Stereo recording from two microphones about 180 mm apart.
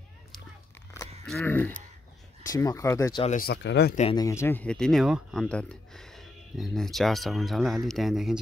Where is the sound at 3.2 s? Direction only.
45° left (ahead or behind).